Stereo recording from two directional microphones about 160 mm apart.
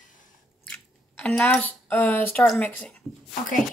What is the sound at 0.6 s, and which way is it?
Chewing, 10° left (ahead or behind).